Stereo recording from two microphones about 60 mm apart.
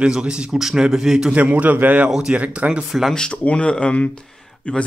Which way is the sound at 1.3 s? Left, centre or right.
Right.